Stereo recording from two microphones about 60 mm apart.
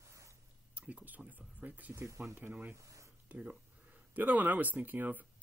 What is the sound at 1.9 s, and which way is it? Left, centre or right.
Speech, right.